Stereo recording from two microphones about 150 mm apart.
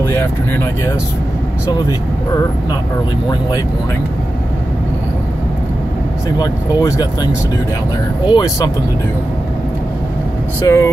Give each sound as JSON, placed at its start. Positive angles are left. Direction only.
{"t": 0.0, "sound": "speech", "side_deg": 15}
{"t": 6.3, "sound": "speech", "side_deg": 25}
{"t": 8.3, "sound": "speech", "side_deg": 25}
{"t": 10.6, "sound": "speech", "side_deg": 20}